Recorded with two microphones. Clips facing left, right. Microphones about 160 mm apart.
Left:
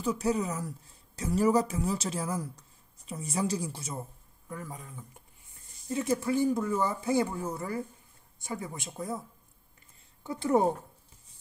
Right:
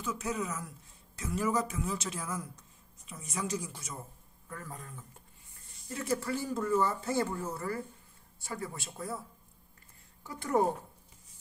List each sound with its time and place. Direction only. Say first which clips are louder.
0.0 s a woman's voice: left 6 dB; 35° left (ahead or behind)
4.5 s speech: left 3 dB; 10° left (ahead or behind)
10.2 s a woman's voice: left 4 dB; 25° left (ahead or behind)